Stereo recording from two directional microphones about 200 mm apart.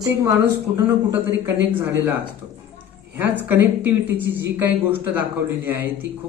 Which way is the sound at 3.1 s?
10° right (ahead or behind).